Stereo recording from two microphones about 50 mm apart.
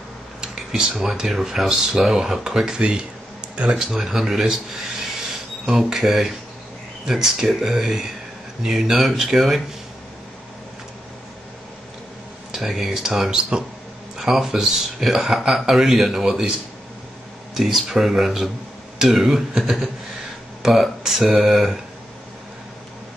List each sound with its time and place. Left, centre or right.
0.4 s a sound: centre
1.1 s speech: centre
12.5 s speech: centre
17.6 s speech: centre